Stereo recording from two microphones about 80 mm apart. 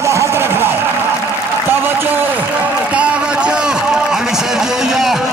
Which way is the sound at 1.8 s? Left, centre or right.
Right.